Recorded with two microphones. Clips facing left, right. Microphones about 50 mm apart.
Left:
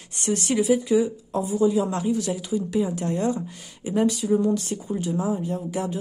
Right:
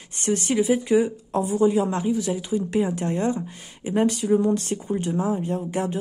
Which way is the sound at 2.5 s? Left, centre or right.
Right.